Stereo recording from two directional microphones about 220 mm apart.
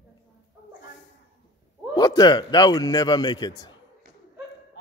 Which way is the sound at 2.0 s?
15° left (ahead or behind).